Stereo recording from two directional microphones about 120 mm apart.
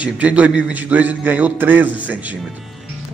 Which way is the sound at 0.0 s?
10° right (ahead or behind).